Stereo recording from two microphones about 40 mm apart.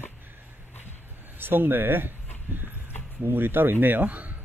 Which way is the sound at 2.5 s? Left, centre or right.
Right.